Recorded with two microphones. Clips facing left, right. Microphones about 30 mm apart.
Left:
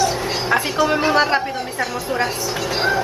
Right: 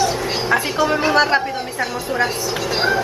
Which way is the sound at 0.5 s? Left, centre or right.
Centre.